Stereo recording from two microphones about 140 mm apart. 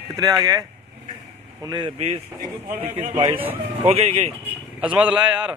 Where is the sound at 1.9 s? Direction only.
45° right (ahead or behind).